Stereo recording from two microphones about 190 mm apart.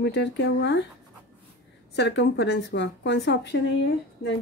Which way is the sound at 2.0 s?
65° left (ahead or behind).